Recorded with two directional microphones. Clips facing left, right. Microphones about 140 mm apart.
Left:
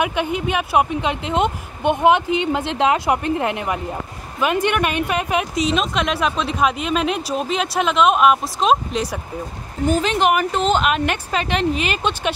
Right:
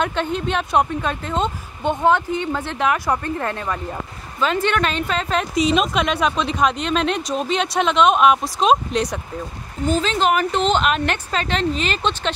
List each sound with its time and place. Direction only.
0.0 s speech: 10° left (ahead or behind)
5.5 s speech: centre (ahead or behind)
9.8 s speech: 15° left (ahead or behind)